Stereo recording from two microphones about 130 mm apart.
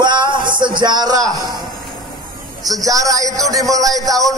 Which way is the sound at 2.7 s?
25° right (ahead or behind).